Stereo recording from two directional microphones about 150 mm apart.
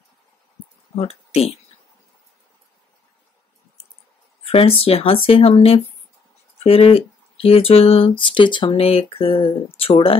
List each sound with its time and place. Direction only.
0.9 s speech: 40° left (ahead or behind)
4.5 s speech: 40° left (ahead or behind)